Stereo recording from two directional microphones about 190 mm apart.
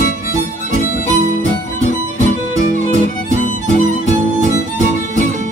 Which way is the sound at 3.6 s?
40° right (ahead or behind).